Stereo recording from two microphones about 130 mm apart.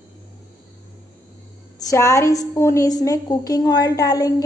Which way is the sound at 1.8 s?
25° left (ahead or behind).